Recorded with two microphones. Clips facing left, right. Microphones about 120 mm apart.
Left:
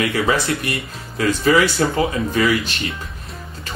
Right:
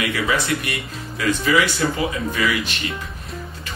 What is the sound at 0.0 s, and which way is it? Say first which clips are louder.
Speech: left 3 dB; 35° left (ahead or behind).